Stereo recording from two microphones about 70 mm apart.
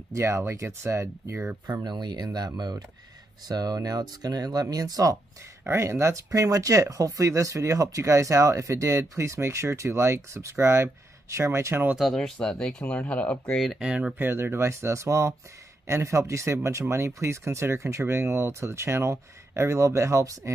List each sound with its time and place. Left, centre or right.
0.1 s speech: right
1.7 s speech: right
5.6 s speech: right
12.0 s speech: centre
12.4 s speech: centre
13.6 s speech: centre
14.1 s speech: right